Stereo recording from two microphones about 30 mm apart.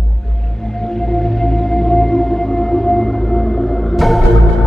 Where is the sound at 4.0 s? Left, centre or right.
Centre.